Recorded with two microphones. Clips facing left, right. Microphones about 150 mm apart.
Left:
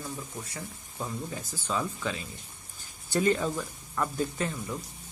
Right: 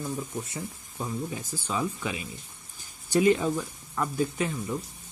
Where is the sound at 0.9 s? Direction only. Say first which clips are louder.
Right 3 dB; 10° right (ahead or behind).